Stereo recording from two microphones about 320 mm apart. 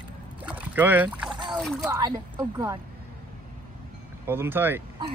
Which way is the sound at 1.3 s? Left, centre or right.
Centre.